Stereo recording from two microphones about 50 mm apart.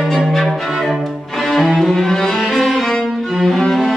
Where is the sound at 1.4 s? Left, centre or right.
Centre.